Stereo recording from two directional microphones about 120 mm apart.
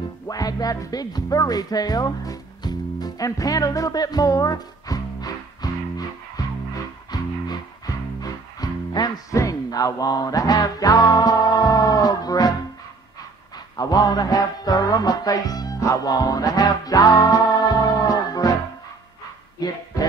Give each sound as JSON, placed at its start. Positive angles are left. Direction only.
{"t": 0.3, "sound": "speech", "side_deg": 30}
{"t": 7.1, "sound": "music", "side_deg": 35}
{"t": 13.7, "sound": "music", "side_deg": 35}
{"t": 19.6, "sound": "speech", "side_deg": 30}